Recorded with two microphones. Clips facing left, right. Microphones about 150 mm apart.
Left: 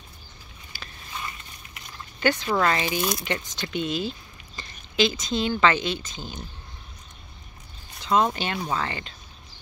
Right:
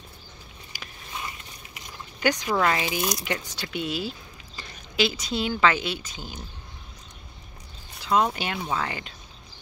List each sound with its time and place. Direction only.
0.7 s biting: 15° right (ahead or behind)
2.1 s speech: 10° right (ahead or behind)
8.0 s speech: 5° right (ahead or behind)